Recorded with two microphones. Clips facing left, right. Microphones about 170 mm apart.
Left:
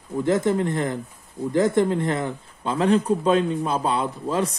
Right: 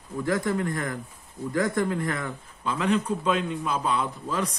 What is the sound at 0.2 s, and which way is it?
A man's voice, 25° left (ahead or behind).